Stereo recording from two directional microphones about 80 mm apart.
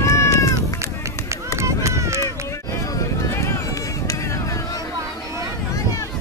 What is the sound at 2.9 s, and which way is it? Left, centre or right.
Vehicle, left.